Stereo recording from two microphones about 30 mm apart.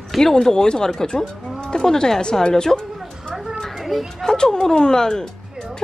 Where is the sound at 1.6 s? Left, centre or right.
Left.